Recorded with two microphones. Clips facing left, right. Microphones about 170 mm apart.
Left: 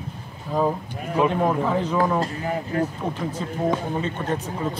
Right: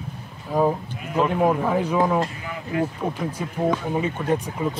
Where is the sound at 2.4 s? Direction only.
40° left (ahead or behind).